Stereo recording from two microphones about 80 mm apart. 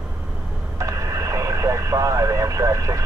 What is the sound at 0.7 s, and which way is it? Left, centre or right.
Radio, right.